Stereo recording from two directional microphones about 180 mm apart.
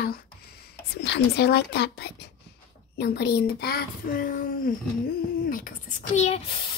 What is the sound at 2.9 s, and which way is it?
Speech, 65° left (ahead or behind).